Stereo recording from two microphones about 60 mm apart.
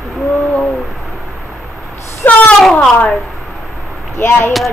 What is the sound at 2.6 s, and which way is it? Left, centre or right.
Speech, centre.